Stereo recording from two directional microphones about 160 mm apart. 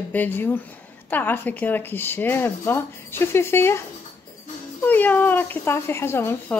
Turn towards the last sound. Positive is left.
turn(degrees=15)  # may be behind; listen again after turning